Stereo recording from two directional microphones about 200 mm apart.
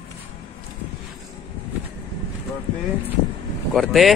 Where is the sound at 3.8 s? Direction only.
Centre (ahead or behind).